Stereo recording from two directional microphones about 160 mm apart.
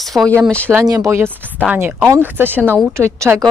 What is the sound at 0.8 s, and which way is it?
Speech, 20° right (ahead or behind).